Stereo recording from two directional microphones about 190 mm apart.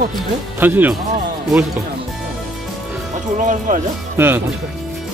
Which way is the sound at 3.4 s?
40° right (ahead or behind).